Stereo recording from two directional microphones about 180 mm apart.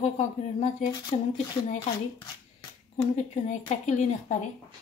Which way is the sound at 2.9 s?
35° left (ahead or behind).